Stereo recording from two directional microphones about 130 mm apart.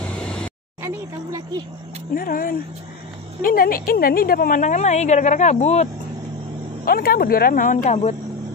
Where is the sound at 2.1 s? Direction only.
90° left.